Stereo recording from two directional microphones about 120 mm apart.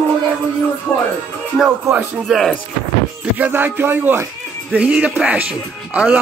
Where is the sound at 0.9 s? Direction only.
10° left (ahead or behind).